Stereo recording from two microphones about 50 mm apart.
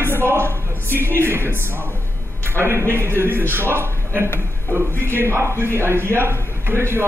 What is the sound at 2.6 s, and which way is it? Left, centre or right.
A woman's voice, right.